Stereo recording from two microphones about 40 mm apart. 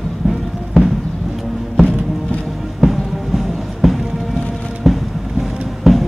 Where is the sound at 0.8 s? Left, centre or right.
Centre.